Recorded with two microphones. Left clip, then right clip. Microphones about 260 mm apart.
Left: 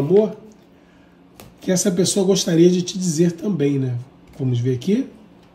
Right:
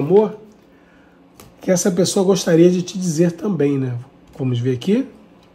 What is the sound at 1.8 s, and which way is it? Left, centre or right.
Speech, centre.